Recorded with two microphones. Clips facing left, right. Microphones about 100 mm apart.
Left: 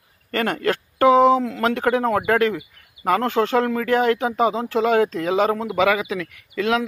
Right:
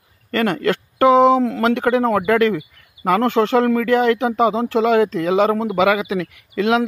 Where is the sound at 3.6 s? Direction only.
45° right (ahead or behind).